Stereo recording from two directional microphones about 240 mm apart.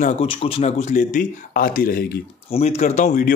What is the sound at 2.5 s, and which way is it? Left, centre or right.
Speech, left.